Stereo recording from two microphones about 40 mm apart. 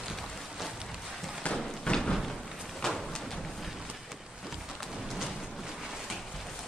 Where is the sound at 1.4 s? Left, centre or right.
Left.